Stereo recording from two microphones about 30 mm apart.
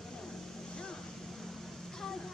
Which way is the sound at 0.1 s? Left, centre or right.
Centre.